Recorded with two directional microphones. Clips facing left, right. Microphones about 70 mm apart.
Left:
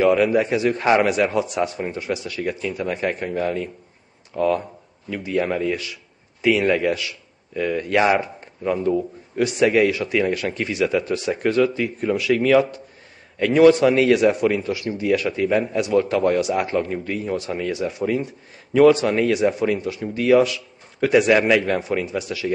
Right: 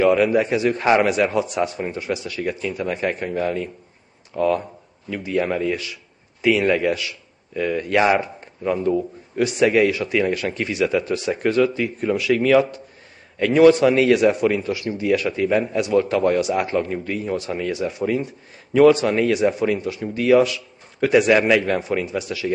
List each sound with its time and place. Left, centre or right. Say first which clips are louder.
0.0 s a man's voice: even; right